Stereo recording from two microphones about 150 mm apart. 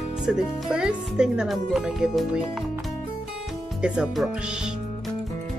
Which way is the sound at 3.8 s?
5° right (ahead or behind).